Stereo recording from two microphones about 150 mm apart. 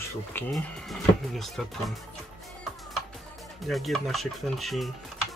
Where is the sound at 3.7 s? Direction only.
Centre (ahead or behind).